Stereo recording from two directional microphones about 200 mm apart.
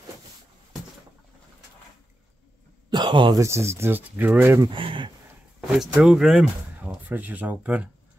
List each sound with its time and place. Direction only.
2.9 s speech: 20° right (ahead or behind)
4.6 s speech: 25° right (ahead or behind)
5.8 s speech: 5° right (ahead or behind)